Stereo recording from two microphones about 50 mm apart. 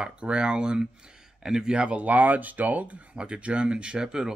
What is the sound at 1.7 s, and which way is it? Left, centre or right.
Speech, right.